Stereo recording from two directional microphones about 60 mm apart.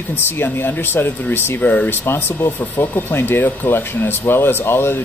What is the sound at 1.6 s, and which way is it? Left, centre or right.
Speech, left.